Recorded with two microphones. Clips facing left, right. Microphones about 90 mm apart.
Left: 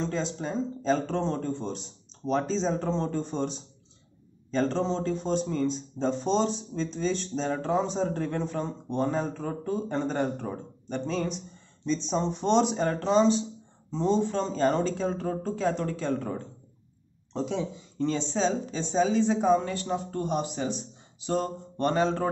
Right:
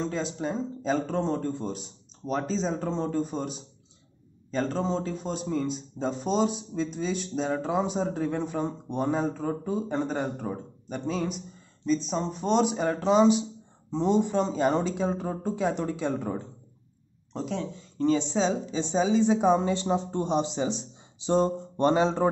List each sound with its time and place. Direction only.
0.0 s speech: 5° right (ahead or behind)
17.3 s speech: centre (ahead or behind); by 22.3 s 15° right (ahead or behind)